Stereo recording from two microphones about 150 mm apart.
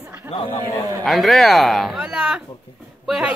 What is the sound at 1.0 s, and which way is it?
Speech, centre (ahead or behind).